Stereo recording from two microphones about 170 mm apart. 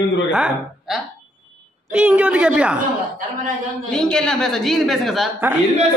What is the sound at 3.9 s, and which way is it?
A man's voice, 5° left (ahead or behind).